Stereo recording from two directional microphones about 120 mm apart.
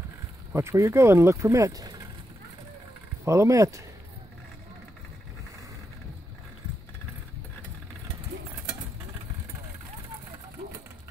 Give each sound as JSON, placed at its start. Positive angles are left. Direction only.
{"t": 0.5, "sound": "speech", "side_deg": -20}
{"t": 3.3, "sound": "speech", "side_deg": -25}